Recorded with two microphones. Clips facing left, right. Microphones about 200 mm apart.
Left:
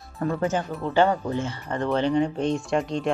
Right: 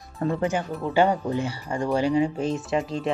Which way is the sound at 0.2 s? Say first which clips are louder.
Even; 20° right (ahead or behind).